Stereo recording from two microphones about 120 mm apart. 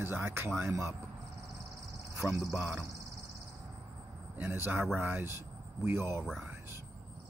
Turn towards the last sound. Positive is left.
turn(degrees=0)  # may be behind; listen again after turning